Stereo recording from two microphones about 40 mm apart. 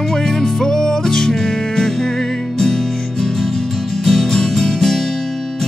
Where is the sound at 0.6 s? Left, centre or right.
Centre.